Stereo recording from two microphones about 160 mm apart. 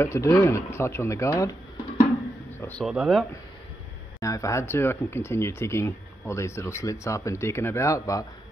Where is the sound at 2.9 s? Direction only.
Centre (ahead or behind).